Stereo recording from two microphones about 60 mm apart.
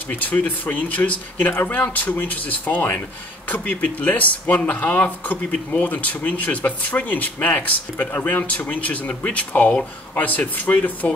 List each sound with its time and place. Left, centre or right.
0.1 s speech: left